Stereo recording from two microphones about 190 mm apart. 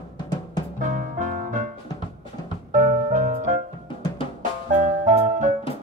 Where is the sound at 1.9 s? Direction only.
25° left (ahead or behind).